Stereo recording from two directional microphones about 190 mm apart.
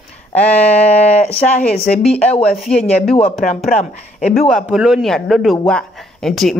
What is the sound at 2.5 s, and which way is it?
Speech, centre (ahead or behind).